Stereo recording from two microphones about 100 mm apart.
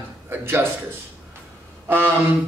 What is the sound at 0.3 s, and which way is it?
Speech, 20° right (ahead or behind).